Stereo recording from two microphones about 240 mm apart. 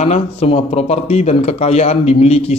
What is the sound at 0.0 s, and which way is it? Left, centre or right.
Speech, left.